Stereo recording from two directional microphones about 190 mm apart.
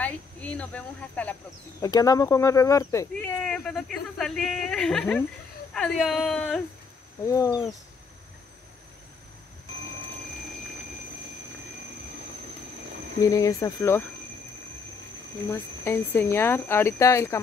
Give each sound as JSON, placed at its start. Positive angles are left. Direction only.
{"t": 0.0, "sound": "speech", "side_deg": 5}
{"t": 1.8, "sound": "speech", "side_deg": 20}
{"t": 3.2, "sound": "speech", "side_deg": 5}
{"t": 7.2, "sound": "speech", "side_deg": 15}
{"t": 13.2, "sound": "speech", "side_deg": 15}
{"t": 15.5, "sound": "speech", "side_deg": 10}